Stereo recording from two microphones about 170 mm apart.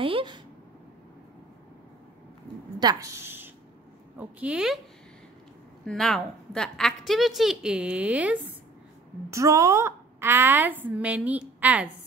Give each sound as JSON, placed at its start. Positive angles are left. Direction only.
{"t": 0.0, "sound": "a sound", "side_deg": -30}
{"t": 2.8, "sound": "a woman's voice", "side_deg": -20}
{"t": 5.9, "sound": "a woman's voice", "side_deg": 0}
{"t": 9.3, "sound": "a woman's voice", "side_deg": -20}